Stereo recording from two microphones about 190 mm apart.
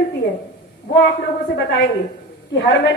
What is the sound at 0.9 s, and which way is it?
A woman's voice, 65° left (ahead or behind).